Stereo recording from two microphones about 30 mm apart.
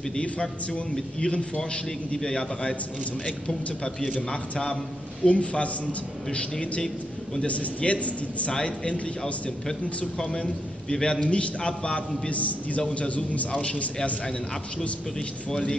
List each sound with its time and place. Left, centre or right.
0.9 s a man's voice: left
4.3 s a man's voice: left
5.2 s a man's voice: left
7.4 s a man's voice: left
10.2 s a man's voice: left
11.2 s a man's voice: left
11.9 s a man's voice: left
12.8 s a man's voice: left
13.1 s a man's voice: left
14.8 s a man's voice: left